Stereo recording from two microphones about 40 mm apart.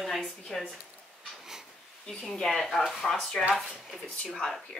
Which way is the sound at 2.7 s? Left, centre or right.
Centre.